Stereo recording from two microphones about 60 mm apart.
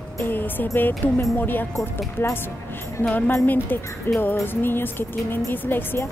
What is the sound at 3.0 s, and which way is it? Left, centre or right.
Speech, left.